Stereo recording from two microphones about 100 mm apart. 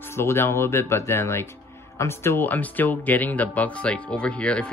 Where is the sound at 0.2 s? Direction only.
25° left (ahead or behind).